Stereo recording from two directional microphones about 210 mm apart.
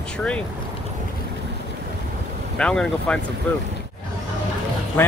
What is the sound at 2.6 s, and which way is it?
Speech, 5° left (ahead or behind).